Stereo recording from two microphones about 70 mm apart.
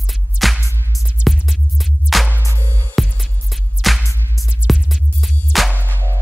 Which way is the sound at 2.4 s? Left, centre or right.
Right.